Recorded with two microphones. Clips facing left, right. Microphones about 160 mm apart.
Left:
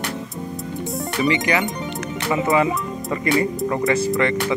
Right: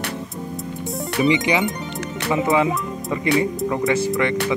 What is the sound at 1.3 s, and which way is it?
Speech, 15° right (ahead or behind).